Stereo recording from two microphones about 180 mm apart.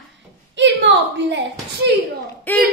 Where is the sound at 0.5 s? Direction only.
75° right (ahead or behind).